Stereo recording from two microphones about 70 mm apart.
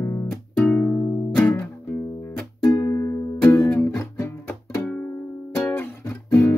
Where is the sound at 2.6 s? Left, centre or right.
Left.